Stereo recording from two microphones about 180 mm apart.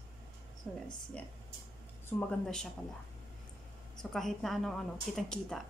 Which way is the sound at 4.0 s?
Centre (ahead or behind).